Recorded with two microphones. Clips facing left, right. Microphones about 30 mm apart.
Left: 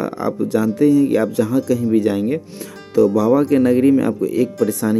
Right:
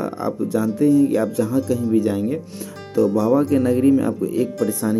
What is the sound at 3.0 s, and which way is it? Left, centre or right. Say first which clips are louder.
Speech: left 3 dB; left.